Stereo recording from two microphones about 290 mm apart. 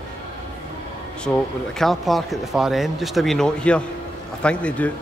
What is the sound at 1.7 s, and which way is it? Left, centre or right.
A man's voice, centre.